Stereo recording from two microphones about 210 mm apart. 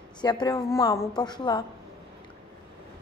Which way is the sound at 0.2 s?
20° left (ahead or behind).